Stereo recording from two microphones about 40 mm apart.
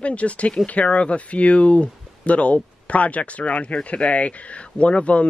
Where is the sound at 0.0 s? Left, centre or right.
Left.